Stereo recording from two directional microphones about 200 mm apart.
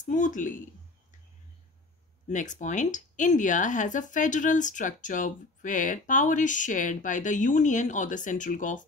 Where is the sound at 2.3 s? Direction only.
40° left (ahead or behind).